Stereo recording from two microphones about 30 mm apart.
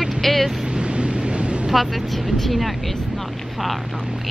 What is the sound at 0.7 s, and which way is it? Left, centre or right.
Vehicle, right.